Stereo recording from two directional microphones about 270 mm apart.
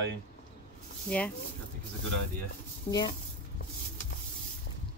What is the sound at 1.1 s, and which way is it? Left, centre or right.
Speech, centre.